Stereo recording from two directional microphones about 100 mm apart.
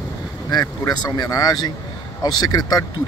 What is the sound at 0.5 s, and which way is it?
Speech, 40° left (ahead or behind).